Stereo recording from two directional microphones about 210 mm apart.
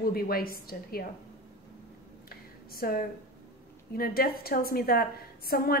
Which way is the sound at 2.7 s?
45° left (ahead or behind).